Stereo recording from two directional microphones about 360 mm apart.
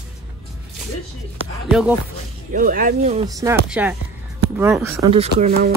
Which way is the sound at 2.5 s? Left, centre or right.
Right.